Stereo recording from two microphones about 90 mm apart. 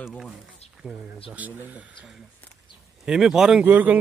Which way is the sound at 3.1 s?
5° right (ahead or behind).